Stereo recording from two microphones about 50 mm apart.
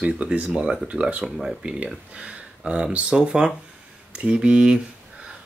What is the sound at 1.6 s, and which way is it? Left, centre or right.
Speech, right.